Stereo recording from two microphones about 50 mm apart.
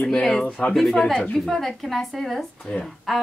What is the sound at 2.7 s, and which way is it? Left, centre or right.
Speech, left.